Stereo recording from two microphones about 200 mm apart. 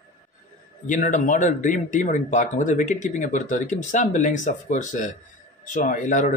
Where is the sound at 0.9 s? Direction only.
40° left (ahead or behind).